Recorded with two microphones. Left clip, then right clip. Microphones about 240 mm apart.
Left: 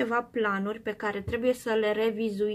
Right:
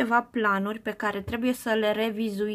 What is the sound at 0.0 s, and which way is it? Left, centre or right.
Speech, right.